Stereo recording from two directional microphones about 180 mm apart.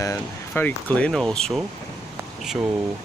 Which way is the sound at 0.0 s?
15° left (ahead or behind).